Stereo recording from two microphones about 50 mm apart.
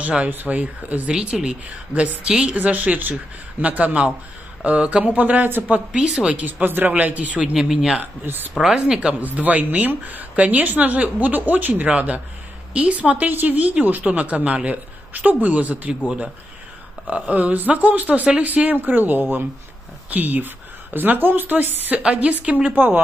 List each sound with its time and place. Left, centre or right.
0.3 s a woman's voice: right
1.2 s speech: right
2.5 s a woman's voice: right
5.9 s speech: centre
6.3 s a woman's voice: right
7.5 s speech: centre
8.0 s a woman's voice: right
8.5 s speech: centre
9.2 s a woman's voice: right
17.1 s a woman's voice: right
22.0 s a woman's voice: right